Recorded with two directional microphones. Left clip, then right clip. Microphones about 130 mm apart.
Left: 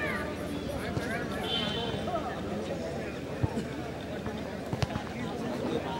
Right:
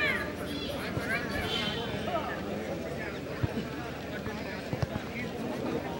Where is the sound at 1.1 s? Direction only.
30° right (ahead or behind).